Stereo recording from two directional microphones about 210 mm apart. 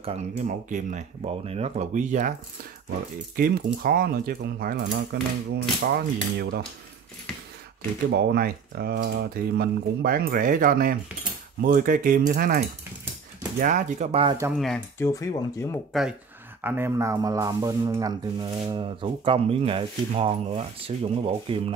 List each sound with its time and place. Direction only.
0.0 s speech: 35° right (ahead or behind)
3.3 s speech: 45° right (ahead or behind)
8.1 s speech: 50° right (ahead or behind); by 14.3 s 30° right (ahead or behind)
15.0 s speech: 15° left (ahead or behind)
15.9 s speech: centre (ahead or behind); by 21.7 s 25° right (ahead or behind)